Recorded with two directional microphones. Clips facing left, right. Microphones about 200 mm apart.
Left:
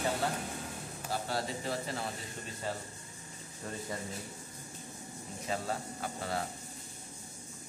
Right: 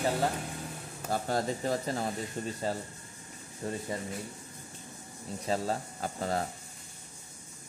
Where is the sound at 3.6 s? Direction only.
25° right (ahead or behind).